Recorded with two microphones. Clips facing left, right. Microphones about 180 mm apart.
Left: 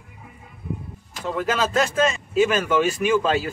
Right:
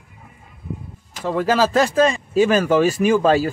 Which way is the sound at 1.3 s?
35° right (ahead or behind).